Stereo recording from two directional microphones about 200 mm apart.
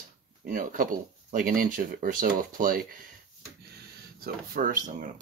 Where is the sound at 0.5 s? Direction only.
45° right (ahead or behind).